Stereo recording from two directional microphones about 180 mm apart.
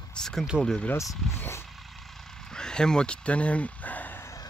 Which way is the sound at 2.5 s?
5° left (ahead or behind).